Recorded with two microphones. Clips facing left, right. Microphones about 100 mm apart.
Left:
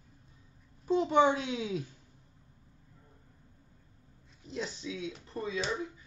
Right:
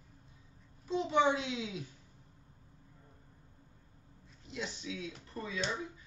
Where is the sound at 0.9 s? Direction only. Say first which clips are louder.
Left 4 dB; 50° left (ahead or behind).